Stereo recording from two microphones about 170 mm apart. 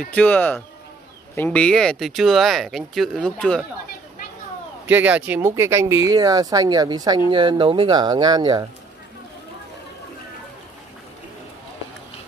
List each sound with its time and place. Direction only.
0.1 s speech: 10° left (ahead or behind)
4.8 s speech: 10° right (ahead or behind)